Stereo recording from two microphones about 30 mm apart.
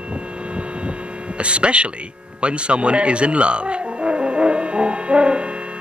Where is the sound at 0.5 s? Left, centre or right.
Right.